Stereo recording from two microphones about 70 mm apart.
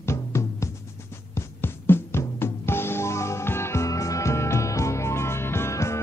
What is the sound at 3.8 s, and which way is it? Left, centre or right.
Music, left.